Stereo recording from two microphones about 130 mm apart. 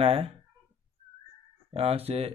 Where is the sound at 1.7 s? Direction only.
50° right (ahead or behind).